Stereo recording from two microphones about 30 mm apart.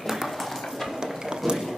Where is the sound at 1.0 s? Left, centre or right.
Right.